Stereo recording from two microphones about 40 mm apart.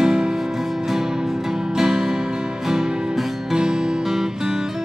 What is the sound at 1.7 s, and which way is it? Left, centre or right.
Music, centre.